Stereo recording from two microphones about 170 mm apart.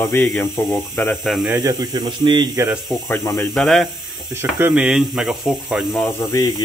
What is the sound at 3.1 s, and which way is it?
Speech, 15° left (ahead or behind).